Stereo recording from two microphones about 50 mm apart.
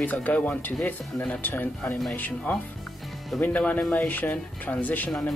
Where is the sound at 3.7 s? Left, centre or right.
Left.